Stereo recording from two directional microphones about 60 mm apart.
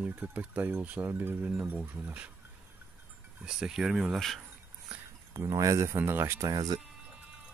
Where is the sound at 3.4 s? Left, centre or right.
Centre.